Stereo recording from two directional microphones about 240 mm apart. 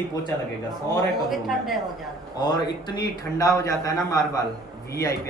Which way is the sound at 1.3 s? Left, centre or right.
Centre.